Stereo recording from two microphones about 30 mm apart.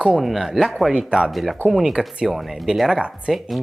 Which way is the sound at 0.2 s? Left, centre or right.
Centre.